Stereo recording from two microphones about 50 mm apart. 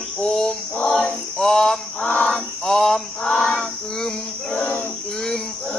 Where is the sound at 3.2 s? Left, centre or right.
Left.